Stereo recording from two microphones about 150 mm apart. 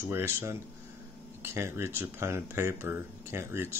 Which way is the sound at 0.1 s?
15° right (ahead or behind).